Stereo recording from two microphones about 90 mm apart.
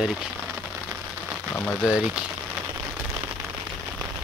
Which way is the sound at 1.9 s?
10° right (ahead or behind).